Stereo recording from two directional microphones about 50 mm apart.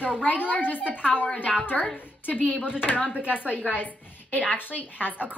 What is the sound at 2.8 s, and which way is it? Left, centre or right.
A woman's voice, left.